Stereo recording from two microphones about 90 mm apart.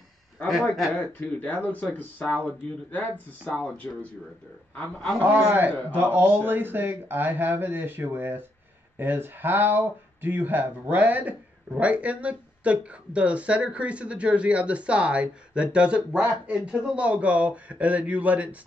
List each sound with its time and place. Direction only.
0.9 s speech: 15° left (ahead or behind)
5.4 s speech: 25° right (ahead or behind)